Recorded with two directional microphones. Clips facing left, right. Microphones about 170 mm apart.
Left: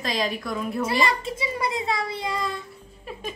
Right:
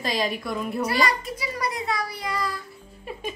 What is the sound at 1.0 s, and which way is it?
A child's voice, 25° left (ahead or behind).